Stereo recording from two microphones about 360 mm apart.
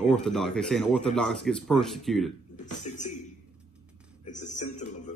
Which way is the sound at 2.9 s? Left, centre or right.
Centre.